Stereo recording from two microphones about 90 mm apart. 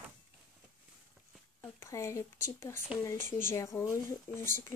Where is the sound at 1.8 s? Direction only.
35° left (ahead or behind).